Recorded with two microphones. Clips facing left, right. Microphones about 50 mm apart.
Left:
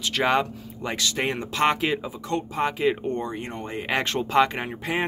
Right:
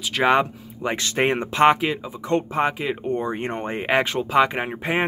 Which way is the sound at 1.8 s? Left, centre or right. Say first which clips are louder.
Right 1 dB; centre.